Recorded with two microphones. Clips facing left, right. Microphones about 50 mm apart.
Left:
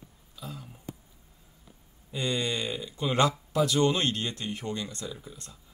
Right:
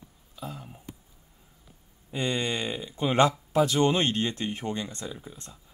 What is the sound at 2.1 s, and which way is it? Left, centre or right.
Speech, right.